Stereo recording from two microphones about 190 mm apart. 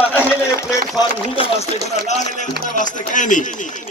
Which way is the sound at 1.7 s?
35° left (ahead or behind).